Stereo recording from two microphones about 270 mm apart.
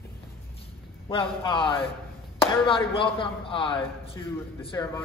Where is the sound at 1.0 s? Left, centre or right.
Centre.